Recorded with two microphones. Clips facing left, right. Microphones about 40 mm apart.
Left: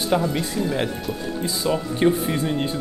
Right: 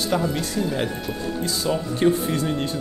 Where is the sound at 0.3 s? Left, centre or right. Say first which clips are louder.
Left 1 dB; centre.